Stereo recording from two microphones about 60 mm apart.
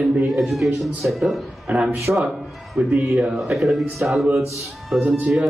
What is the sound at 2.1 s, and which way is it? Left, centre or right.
Speech, centre.